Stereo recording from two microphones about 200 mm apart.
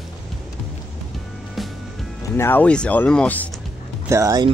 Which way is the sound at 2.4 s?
10° left (ahead or behind).